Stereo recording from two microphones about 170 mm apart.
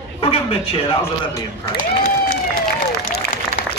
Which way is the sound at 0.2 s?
35° left (ahead or behind).